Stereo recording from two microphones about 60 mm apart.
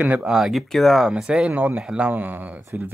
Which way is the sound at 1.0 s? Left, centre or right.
Centre.